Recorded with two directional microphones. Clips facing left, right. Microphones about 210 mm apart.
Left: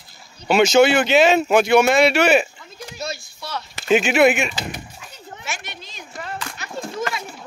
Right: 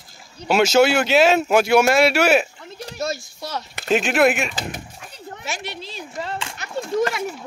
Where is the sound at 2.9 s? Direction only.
45° right (ahead or behind).